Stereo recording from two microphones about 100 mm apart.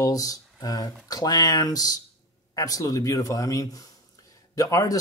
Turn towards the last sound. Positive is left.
turn(degrees=35)  # may be behind; listen again after turning